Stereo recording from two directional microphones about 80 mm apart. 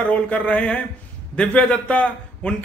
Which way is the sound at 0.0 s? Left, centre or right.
Centre.